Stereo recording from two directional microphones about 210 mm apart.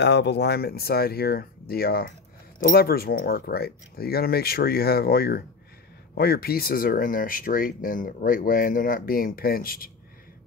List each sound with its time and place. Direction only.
0.0 s speech: 55° left (ahead or behind)